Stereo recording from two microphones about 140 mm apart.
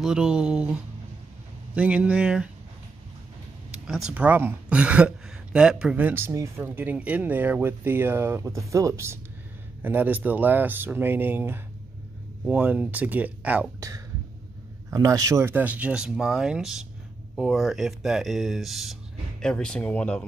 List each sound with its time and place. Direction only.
0.0 s speech: 5° right (ahead or behind)
1.8 s a woman's voice: 10° right (ahead or behind)
3.7 s a woman's voice: 5° right (ahead or behind)
13.7 s a woman's voice: 20° right (ahead or behind); by 20.2 s 10° left (ahead or behind)